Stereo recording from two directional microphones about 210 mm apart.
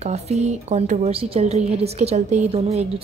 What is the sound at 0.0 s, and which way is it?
A woman's voice, 30° right (ahead or behind).